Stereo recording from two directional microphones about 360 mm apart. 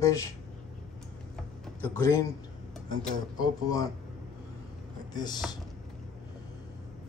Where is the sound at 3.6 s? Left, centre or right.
Centre.